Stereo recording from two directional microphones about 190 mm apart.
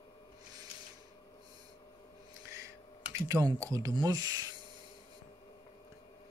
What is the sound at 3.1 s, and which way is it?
Speech, 20° right (ahead or behind).